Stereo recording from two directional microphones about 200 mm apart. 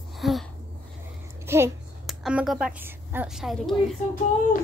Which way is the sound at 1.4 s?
15° right (ahead or behind).